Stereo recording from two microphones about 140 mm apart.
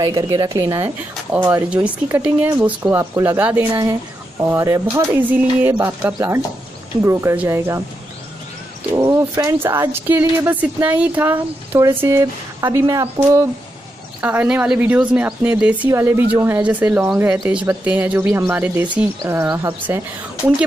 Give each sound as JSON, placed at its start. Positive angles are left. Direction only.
{"t": 0.0, "sound": "speech", "side_deg": -25}
{"t": 1.3, "sound": "speech", "side_deg": -10}
{"t": 8.9, "sound": "speech", "side_deg": -20}
{"t": 14.2, "sound": "speech", "side_deg": -10}